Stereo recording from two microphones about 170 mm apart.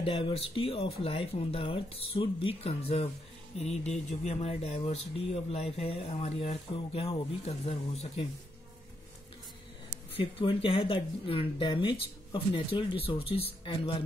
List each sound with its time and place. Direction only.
0.0 s speech: 30° left (ahead or behind)
10.1 s speech: 30° left (ahead or behind)